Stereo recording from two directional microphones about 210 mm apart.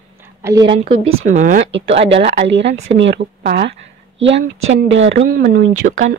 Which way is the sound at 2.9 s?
60° right (ahead or behind).